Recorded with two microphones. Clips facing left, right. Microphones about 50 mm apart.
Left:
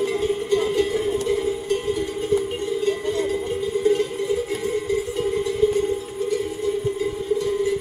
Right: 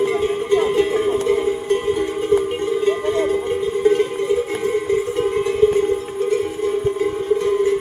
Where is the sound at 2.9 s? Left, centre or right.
Right.